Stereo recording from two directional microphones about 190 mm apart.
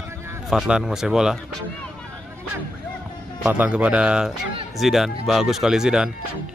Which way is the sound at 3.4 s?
10° right (ahead or behind).